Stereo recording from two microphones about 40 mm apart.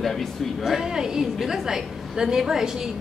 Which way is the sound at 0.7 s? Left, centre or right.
Centre.